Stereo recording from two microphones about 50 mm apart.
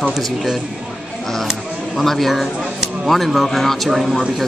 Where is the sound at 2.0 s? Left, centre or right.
Centre.